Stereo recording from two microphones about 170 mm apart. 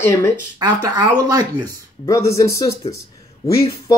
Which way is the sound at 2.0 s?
20° left (ahead or behind).